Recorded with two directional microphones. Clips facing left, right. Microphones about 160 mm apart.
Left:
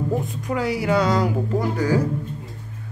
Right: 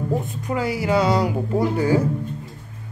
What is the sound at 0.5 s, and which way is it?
Speech, centre (ahead or behind).